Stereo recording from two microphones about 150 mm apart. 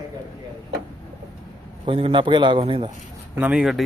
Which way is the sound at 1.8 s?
35° right (ahead or behind).